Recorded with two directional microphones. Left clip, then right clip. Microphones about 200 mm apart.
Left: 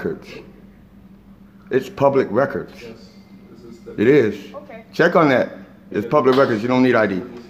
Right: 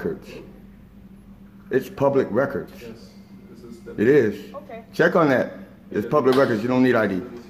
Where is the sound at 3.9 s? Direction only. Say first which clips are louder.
Left 3 dB; 15° left (ahead or behind).